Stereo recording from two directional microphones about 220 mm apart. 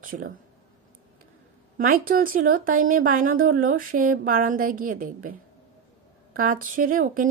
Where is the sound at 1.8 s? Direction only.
40° right (ahead or behind).